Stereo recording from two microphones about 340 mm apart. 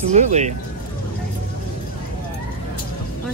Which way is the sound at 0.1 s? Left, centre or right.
Centre.